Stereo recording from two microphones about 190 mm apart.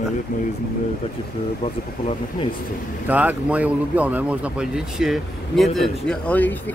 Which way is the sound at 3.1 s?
10° right (ahead or behind).